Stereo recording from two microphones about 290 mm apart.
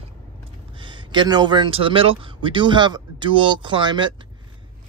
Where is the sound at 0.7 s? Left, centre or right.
Centre.